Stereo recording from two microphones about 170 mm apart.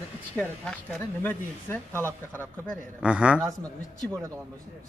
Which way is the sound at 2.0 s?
15° right (ahead or behind).